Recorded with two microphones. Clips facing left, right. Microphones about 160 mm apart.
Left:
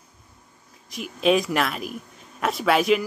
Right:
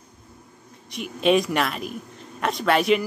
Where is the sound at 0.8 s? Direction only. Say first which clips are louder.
Even; centre (ahead or behind).